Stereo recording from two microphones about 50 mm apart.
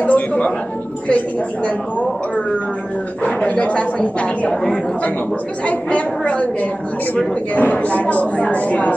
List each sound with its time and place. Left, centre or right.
0.0 s a sound: left
3.3 s a woman's voice: left
5.7 s a woman's voice: left